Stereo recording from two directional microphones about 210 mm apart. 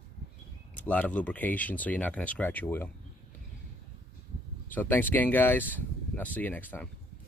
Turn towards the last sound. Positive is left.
turn(degrees=10)  # may be behind; listen again after turning